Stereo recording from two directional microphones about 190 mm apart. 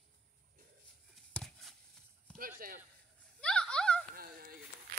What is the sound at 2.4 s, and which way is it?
Speech, 50° right (ahead or behind).